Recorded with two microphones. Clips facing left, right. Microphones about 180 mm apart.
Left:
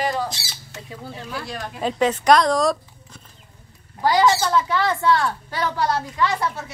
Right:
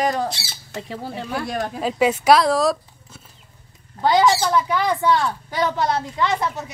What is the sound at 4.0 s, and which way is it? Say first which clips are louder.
A woman's voice: right 1 dB; 20° right (ahead or behind).